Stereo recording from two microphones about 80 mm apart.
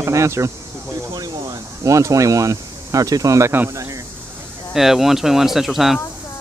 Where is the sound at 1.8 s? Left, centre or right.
Right.